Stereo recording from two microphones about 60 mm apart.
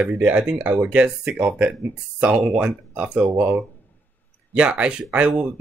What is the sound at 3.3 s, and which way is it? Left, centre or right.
Speech, right.